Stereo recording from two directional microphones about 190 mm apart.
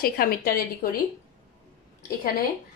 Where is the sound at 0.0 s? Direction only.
50° left (ahead or behind).